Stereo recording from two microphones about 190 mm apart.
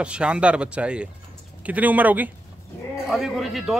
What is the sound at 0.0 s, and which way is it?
A man's voice, 5° right (ahead or behind).